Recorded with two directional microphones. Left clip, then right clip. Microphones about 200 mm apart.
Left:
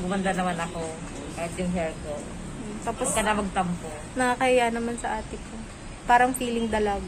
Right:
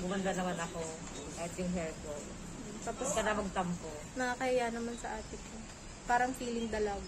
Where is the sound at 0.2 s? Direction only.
20° right (ahead or behind).